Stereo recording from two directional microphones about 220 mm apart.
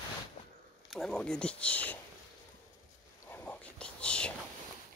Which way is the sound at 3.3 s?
10° left (ahead or behind).